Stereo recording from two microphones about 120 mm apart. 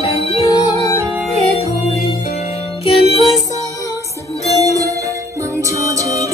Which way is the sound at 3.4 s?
25° left (ahead or behind).